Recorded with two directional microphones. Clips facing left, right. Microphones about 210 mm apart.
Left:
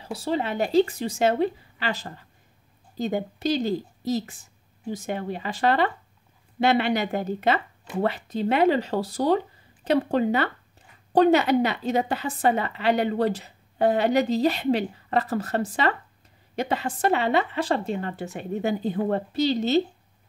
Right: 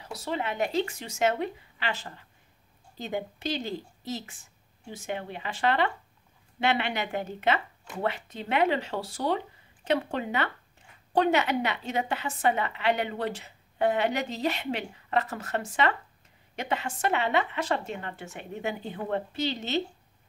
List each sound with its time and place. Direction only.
0.0 s a woman's voice: 30° left (ahead or behind)